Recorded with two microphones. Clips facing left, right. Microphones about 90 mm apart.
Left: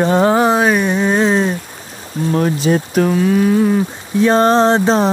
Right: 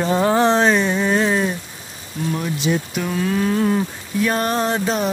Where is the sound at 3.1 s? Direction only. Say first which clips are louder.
Left 4 dB; 25° left (ahead or behind).